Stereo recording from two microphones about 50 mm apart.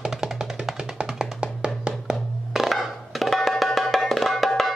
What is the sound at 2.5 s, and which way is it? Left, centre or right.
Music, centre.